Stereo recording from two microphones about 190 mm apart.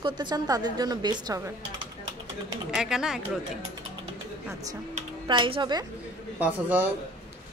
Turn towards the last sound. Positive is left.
turn(degrees=-10)  # may be behind; listen again after turning